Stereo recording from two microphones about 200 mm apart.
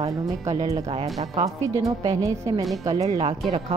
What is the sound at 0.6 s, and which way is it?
Speech, 20° right (ahead or behind).